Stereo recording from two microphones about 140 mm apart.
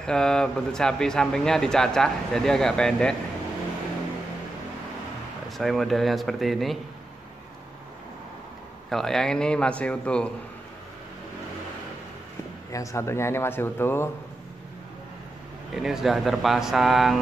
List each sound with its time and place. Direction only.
0.0 s speech: 5° left (ahead or behind)
5.6 s speech: centre (ahead or behind)
8.9 s a man's voice: 5° left (ahead or behind)
12.7 s speech: 20° left (ahead or behind)
15.7 s speech: 5° right (ahead or behind)